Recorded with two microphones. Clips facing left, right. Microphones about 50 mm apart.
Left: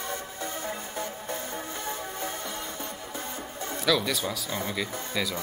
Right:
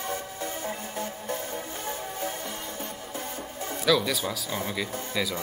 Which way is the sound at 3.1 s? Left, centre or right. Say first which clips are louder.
Right 1 dB; left.